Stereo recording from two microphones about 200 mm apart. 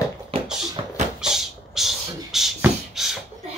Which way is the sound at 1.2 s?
Centre (ahead or behind).